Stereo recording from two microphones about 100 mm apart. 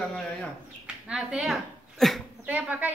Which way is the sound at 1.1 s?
10° right (ahead or behind).